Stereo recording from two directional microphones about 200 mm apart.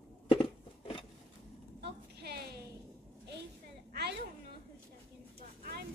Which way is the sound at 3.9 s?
55° right (ahead or behind).